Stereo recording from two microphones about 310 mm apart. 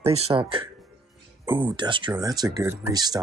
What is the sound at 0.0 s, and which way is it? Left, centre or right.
Speech, centre.